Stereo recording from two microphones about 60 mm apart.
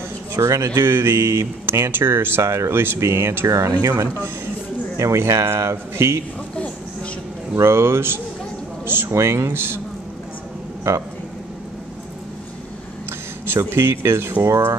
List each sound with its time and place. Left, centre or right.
0.4 s speech: right
0.7 s speech: right
3.4 s speech: right
4.9 s speech: right
7.6 s speech: right
9.1 s speech: right
13.5 s speech: right
14.4 s speech: right